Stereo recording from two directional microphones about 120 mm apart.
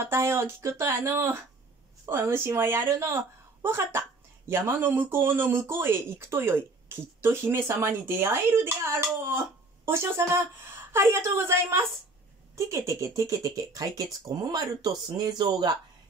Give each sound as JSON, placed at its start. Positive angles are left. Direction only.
{"t": 0.0, "sound": "speech", "side_deg": -20}
{"t": 9.8, "sound": "speech", "side_deg": -20}